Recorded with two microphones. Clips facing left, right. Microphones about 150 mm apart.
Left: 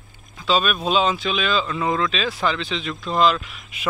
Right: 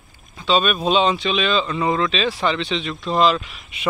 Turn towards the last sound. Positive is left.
turn(degrees=0)  # may be behind; listen again after turning